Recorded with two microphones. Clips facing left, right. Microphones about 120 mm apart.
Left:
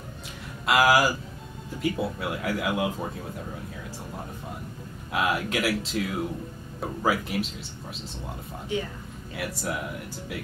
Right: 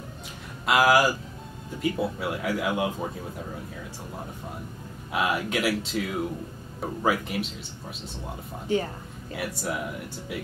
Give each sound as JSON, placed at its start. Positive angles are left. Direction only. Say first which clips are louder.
{"t": 0.7, "sound": "speech", "louder": "even", "side_deg": 0}
{"t": 5.1, "sound": "speech", "louder": "even", "side_deg": 0}
{"t": 8.6, "sound": "speech", "louder": "right 4 dB", "side_deg": -40}
{"t": 9.4, "sound": "speech", "louder": "right 1 dB", "side_deg": 0}